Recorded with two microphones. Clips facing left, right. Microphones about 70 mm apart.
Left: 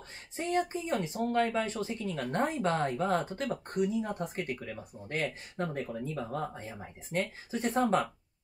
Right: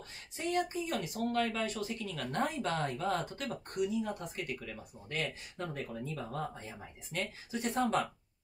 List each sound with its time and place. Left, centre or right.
0.4 s speech: left
6.1 s speech: left